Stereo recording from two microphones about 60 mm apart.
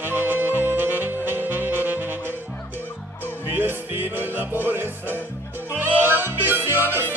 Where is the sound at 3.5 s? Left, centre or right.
Right.